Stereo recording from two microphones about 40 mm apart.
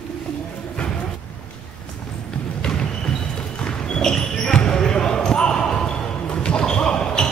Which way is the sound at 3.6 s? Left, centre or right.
Centre.